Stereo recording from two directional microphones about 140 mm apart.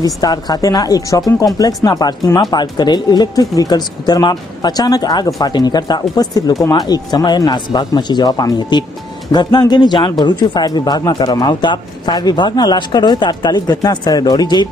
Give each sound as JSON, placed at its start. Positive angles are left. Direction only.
{"t": 0.0, "sound": "a man's voice", "side_deg": 25}